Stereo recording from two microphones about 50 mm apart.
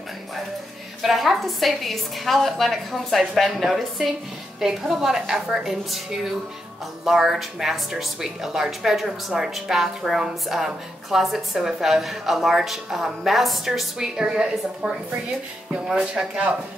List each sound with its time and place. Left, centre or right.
1.0 s a woman's voice: centre
16.0 s speech: right